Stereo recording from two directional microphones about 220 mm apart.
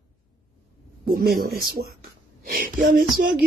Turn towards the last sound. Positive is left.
turn(degrees=-40)  # may be behind; listen again after turning